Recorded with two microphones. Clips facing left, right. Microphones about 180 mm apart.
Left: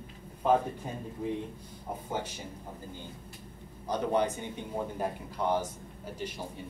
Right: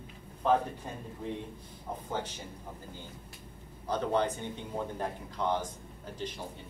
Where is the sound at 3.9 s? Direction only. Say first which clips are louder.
Left 1 dB; 15° left (ahead or behind).